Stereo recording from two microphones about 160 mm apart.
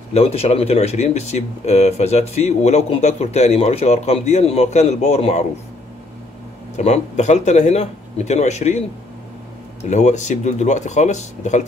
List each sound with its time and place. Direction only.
0.1 s speech: 40° left (ahead or behind)
6.8 s speech: 45° left (ahead or behind)
9.8 s speech: 45° left (ahead or behind)